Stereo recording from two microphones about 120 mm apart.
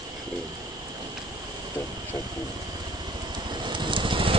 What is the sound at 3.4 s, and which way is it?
Vehicle, 40° right (ahead or behind).